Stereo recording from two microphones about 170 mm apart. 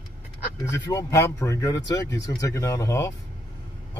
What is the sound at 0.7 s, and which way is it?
Speech, 20° left (ahead or behind).